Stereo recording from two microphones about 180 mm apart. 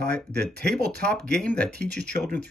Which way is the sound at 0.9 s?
5° left (ahead or behind).